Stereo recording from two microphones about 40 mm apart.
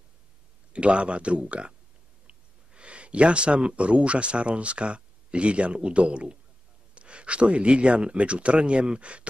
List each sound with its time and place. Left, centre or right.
0.7 s speech: right